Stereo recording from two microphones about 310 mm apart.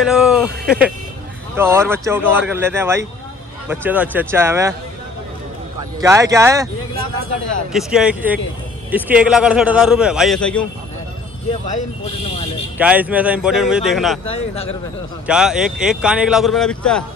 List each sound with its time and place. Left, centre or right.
0.0 s speech: centre
5.8 s speech: centre
7.7 s a man's voice: centre
12.7 s a man's voice: centre
14.3 s a man's voice: centre
15.2 s a man's voice: centre